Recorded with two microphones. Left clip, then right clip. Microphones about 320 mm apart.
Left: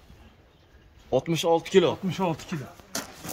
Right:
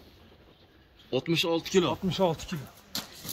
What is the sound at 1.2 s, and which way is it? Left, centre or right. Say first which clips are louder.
Speech: left 2 dB; centre.